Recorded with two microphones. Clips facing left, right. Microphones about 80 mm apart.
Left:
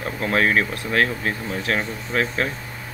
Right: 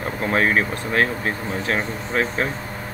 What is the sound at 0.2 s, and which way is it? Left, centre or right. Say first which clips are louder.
Speech: even; centre.